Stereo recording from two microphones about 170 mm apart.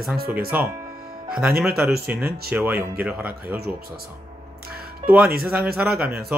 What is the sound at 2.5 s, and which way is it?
Speech, 10° right (ahead or behind).